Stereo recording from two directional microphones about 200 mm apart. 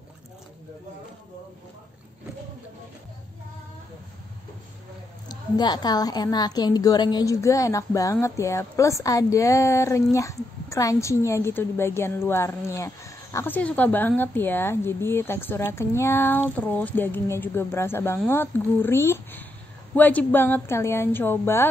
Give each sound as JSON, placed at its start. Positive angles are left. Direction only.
{"t": 5.3, "sound": "a woman's voice", "side_deg": 20}